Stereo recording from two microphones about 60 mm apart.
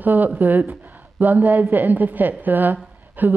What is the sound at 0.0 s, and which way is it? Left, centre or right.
Speech, right.